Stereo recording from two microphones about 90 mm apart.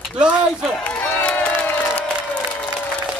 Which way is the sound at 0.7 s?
15° left (ahead or behind).